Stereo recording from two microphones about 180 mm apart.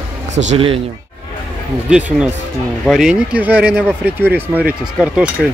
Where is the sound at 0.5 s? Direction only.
30° right (ahead or behind).